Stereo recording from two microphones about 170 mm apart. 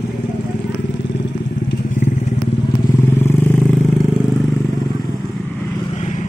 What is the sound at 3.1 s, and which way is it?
Vehicle, 15° left (ahead or behind).